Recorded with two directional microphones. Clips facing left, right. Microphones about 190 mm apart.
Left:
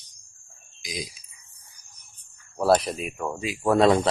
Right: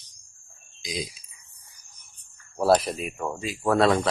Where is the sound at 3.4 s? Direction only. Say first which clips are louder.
Left 2 dB; 10° left (ahead or behind).